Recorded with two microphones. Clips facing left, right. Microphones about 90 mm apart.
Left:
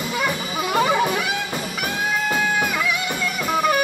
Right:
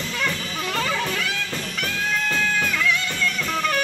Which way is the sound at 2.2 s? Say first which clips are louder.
Left 4 dB; 15° left (ahead or behind).